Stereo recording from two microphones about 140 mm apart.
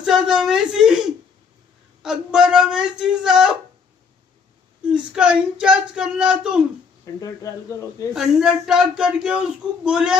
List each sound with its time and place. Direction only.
0.0 s whimper: 5° right (ahead or behind)
2.0 s speech: 5° right (ahead or behind)
4.8 s speech: 5° right (ahead or behind)
7.2 s speech: 25° left (ahead or behind)
8.1 s speech: 5° right (ahead or behind)